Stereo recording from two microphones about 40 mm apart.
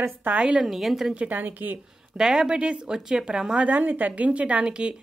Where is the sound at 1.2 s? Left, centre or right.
Right.